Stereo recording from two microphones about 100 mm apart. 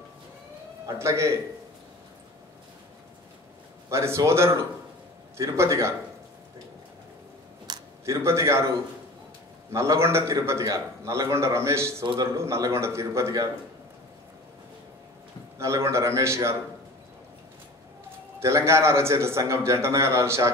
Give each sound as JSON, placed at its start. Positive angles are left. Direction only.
{"t": 0.8, "sound": "a man's voice", "side_deg": -30}
{"t": 3.9, "sound": "a man's voice", "side_deg": -30}
{"t": 7.7, "sound": "a sound", "side_deg": -45}
{"t": 8.0, "sound": "a man's voice", "side_deg": -30}
{"t": 15.6, "sound": "a man's voice", "side_deg": -30}
{"t": 18.4, "sound": "a man's voice", "side_deg": -30}